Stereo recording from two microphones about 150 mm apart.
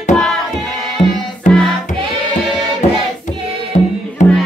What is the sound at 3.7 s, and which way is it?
Music, 60° left (ahead or behind).